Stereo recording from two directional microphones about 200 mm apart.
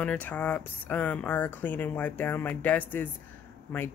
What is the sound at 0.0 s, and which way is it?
Speech, 5° left (ahead or behind).